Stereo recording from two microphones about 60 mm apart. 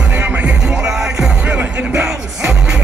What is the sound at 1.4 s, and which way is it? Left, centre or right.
Music, right.